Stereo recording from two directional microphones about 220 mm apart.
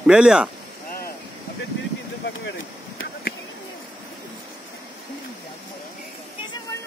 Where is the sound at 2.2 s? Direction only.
55° left (ahead or behind).